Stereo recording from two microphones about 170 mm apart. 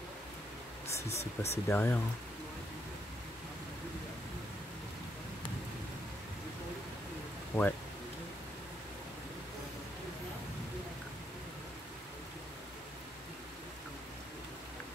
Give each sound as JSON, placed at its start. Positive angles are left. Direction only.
{"t": 1.0, "sound": "speech", "side_deg": 40}
{"t": 1.7, "sound": "speech", "side_deg": 10}
{"t": 7.5, "sound": "speech", "side_deg": 10}